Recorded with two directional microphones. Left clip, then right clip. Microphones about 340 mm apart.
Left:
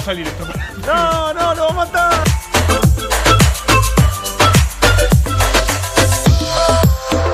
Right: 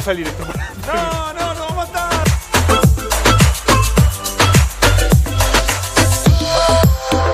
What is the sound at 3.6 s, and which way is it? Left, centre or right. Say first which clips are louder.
Music: even; left.